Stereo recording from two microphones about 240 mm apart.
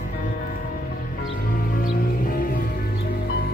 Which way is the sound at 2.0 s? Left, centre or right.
Left.